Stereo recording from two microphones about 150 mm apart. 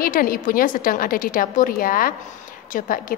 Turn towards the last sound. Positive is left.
turn(degrees=65)  # may be behind; listen again after turning